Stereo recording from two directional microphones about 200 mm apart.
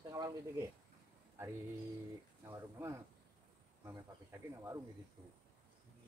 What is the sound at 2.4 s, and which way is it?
Speech, 15° right (ahead or behind).